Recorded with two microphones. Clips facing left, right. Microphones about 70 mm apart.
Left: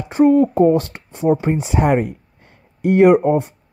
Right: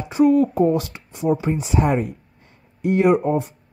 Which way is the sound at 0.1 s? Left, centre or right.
Left.